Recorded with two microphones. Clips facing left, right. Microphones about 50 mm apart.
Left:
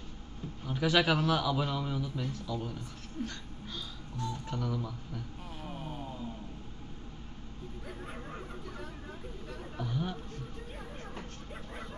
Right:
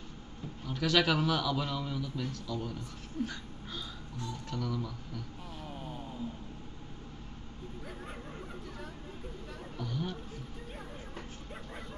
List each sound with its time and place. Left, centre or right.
0.7 s a man's voice: centre
4.5 s speech: centre
4.8 s a sound: centre
9.8 s chatter: centre